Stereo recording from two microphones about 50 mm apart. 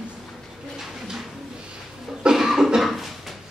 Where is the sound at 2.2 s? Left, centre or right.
Centre.